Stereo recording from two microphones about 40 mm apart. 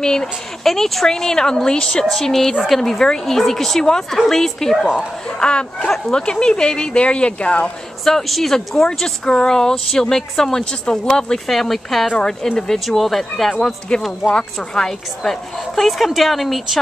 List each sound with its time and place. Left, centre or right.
0.0 s speech: centre
0.7 s speech: centre
2.0 s speech: centre
5.4 s speech: left
8.0 s speech: centre
11.3 s a woman's voice: centre
12.8 s a woman's voice: centre
14.3 s a woman's voice: centre